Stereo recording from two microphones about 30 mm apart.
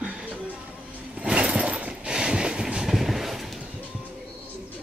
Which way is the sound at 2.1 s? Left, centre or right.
Right.